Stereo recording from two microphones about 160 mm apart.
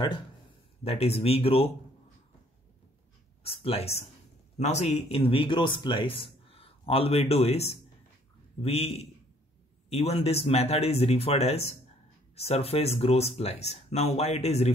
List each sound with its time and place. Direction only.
0.8 s a man's voice: 40° left (ahead or behind)
3.4 s a man's voice: 40° left (ahead or behind)